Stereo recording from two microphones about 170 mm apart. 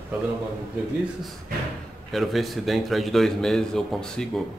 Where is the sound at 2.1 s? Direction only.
Centre (ahead or behind).